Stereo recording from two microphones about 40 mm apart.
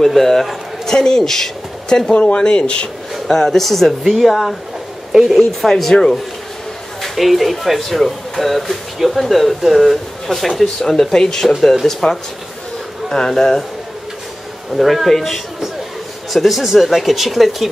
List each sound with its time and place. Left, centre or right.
0.0 s a man's voice: centre
2.2 s speech: left
3.3 s speech: centre
14.7 s speech: centre